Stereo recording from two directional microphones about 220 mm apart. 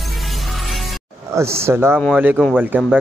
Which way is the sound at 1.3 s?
10° right (ahead or behind).